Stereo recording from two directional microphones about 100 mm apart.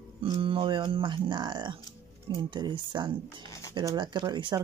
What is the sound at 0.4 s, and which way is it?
Speech, 60° right (ahead or behind).